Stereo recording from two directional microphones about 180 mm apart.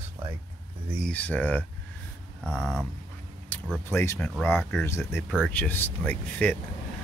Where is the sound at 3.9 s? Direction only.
15° left (ahead or behind).